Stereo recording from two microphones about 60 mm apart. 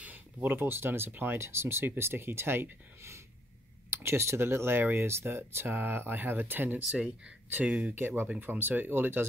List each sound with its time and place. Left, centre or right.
0.0 s speech: right
7.5 s speech: right